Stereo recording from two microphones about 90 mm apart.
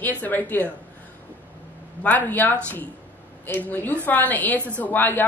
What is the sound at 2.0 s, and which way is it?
A woman's voice, 20° left (ahead or behind).